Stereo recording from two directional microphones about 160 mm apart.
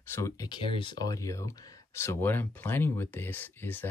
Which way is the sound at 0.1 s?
20° left (ahead or behind).